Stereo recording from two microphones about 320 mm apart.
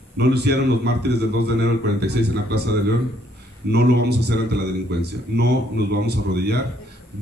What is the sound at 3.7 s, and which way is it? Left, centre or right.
A man's voice, right.